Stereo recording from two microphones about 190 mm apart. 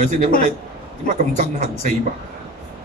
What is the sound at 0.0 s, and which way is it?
Speech, 40° right (ahead or behind).